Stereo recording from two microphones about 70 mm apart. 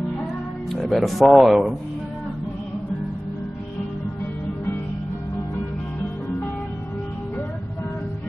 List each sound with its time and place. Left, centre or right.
0.7 s speech: centre